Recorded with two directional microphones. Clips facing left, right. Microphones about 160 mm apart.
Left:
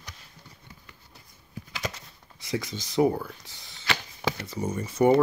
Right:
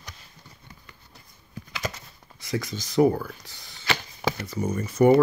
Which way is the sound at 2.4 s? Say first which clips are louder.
Right 1 dB; 25° left (ahead or behind).